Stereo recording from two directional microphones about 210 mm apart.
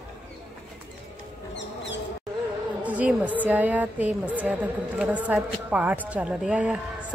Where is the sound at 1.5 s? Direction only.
60° left (ahead or behind).